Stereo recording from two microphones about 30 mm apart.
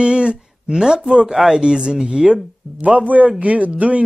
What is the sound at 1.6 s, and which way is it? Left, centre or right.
Speech, right.